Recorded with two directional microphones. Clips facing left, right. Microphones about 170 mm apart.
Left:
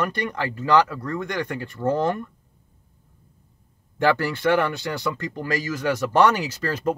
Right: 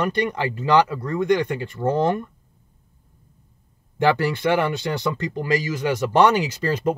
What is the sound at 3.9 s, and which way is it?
Speech, 20° right (ahead or behind).